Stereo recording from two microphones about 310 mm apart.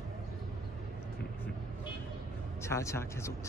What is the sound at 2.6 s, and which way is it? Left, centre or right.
Speech, centre.